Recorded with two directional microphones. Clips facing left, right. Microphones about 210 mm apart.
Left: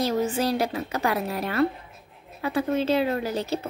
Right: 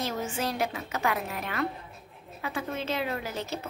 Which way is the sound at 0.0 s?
35° left (ahead or behind).